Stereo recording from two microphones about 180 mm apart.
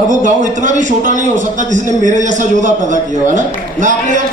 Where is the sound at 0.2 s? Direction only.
45° right (ahead or behind).